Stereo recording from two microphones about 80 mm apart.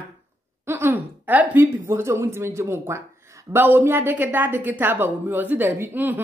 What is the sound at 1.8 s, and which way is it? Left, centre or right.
Speech, right.